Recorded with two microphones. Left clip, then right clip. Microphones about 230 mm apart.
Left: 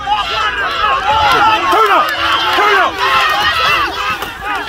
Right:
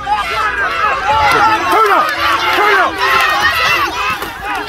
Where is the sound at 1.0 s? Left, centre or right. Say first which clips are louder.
Even; right.